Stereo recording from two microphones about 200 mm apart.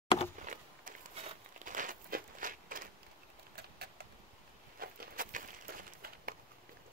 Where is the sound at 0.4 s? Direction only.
40° right (ahead or behind).